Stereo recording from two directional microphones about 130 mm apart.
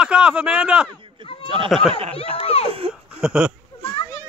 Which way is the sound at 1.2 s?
40° right (ahead or behind).